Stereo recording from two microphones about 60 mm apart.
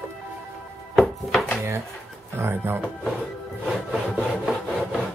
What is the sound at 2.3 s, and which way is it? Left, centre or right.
Speech, right.